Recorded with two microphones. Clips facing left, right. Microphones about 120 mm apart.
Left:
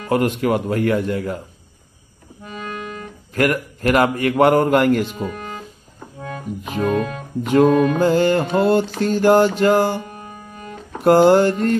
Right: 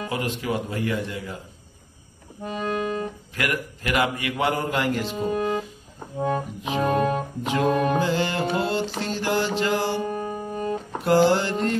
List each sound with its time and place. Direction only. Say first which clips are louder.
0.1 s speech: left 11 dB; 55° left (ahead or behind)
2.4 s accordion: right 4 dB; 35° right (ahead or behind)
3.3 s mantra: left 9 dB; 45° left (ahead or behind)
6.1 s music: right 7 dB; 30° right (ahead or behind)
6.9 s speech: left 1 dB; 40° right (ahead or behind)
7.4 s mantra: left 8 dB; 45° left (ahead or behind)
10.0 s music: right 8 dB; 35° right (ahead or behind)
11.1 s mantra: left 7 dB; 50° left (ahead or behind)